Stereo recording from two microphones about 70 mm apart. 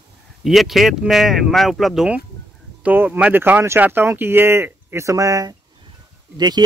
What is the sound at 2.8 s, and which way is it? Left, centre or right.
Speech, right.